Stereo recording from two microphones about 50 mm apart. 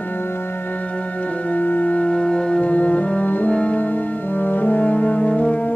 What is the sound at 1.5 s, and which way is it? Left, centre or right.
Music, left.